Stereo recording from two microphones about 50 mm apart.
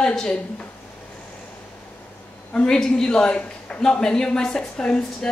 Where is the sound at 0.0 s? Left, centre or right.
Centre.